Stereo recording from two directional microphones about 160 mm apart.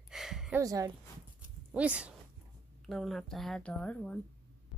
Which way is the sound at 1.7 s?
5° right (ahead or behind).